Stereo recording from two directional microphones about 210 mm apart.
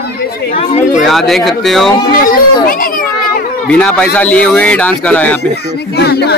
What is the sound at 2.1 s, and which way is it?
Children playing, 45° left (ahead or behind).